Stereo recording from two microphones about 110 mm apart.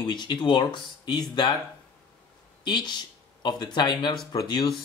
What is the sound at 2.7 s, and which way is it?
Speech, 45° left (ahead or behind).